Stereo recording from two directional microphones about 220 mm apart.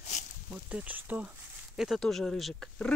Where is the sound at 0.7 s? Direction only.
5° right (ahead or behind).